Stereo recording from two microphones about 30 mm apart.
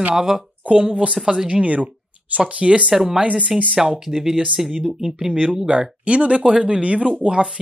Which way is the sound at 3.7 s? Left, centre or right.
Right.